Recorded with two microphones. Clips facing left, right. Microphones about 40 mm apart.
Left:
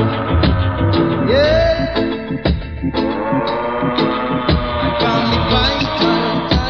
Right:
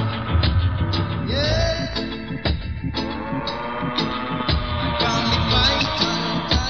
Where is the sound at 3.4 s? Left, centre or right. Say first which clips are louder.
Left 8 dB; left.